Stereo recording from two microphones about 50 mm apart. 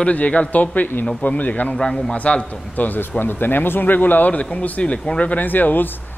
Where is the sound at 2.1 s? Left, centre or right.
Left.